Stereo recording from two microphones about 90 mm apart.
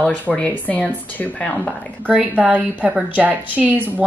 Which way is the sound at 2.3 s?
15° right (ahead or behind).